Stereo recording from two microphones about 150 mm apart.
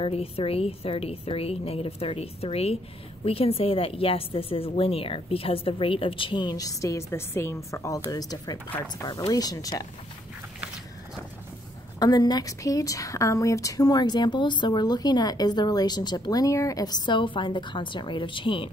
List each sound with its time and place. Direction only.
0.0 s a woman's voice: 40° left (ahead or behind)
8.6 s speech: 10° left (ahead or behind)
8.9 s a woman's voice: 25° left (ahead or behind)
12.0 s a woman's voice: 25° left (ahead or behind)